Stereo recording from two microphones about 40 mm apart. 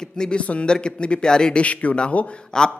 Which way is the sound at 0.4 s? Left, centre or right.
Left.